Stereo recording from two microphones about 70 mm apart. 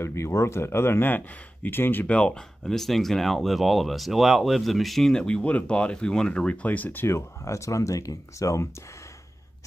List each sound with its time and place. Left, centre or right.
0.0 s speech: left
2.1 s speech: centre; by 8.6 s left